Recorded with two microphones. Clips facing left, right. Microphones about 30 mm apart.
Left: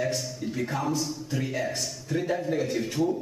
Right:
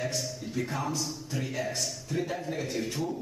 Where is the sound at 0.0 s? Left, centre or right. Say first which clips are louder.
Left 4 dB; centre.